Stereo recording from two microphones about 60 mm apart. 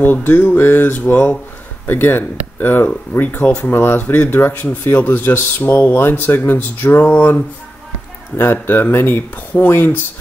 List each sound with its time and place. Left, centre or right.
0.0 s speech: left
8.4 s speech: left